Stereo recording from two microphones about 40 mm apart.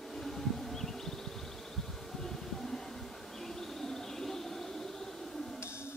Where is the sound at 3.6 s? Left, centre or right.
Centre.